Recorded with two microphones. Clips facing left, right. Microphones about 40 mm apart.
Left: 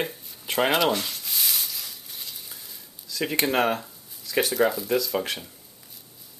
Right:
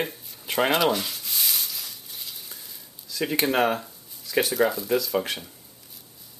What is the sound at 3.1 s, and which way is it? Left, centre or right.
Speech, centre.